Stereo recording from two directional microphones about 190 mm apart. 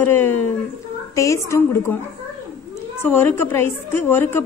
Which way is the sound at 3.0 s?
10° left (ahead or behind).